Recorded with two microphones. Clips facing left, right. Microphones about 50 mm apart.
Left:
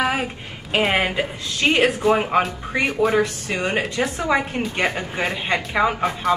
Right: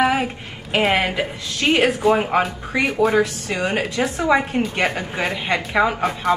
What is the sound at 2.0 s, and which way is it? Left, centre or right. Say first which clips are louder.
A woman's voice: right 1 dB; centre.